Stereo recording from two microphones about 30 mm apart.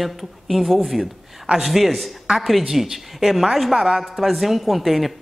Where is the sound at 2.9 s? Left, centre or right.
Centre.